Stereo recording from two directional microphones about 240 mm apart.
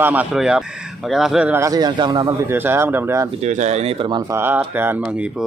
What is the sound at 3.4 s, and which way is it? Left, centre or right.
Speech, right.